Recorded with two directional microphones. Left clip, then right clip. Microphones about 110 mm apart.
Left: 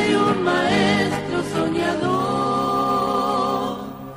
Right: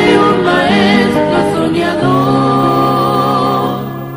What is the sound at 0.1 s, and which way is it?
Music, 30° right (ahead or behind).